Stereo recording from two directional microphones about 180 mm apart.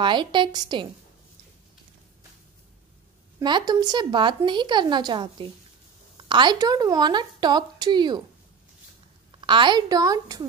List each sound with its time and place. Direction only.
0.0 s a woman's voice: 25° right (ahead or behind)
3.3 s a woman's voice: 25° right (ahead or behind)
9.4 s a woman's voice: 25° right (ahead or behind)